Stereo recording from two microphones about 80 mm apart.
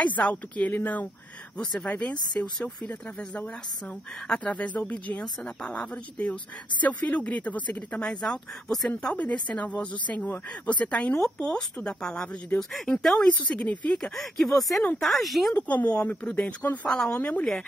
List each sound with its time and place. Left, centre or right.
0.0 s speech: centre
1.6 s speech: centre
15.5 s speech: centre
16.8 s speech: centre
17.1 s speech: centre